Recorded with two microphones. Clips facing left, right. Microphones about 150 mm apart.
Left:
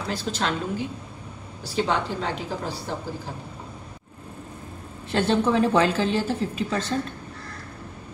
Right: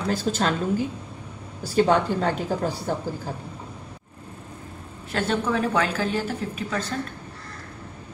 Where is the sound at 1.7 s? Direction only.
50° right (ahead or behind).